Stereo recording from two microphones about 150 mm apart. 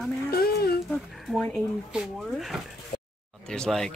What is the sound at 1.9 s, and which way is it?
A man's voice, 5° right (ahead or behind).